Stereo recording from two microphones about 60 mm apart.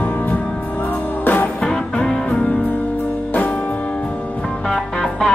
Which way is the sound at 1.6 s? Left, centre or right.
Centre.